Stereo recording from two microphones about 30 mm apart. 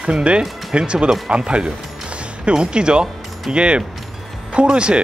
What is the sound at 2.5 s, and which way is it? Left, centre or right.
Speech, right.